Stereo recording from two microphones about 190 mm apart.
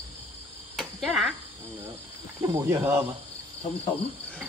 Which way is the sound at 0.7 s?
Centre (ahead or behind).